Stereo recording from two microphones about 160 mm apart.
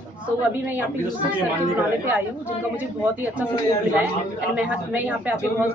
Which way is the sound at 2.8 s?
10° right (ahead or behind).